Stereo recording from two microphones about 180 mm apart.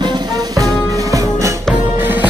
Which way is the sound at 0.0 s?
25° right (ahead or behind).